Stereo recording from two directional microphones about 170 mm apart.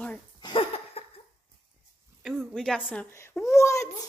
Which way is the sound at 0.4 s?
30° left (ahead or behind).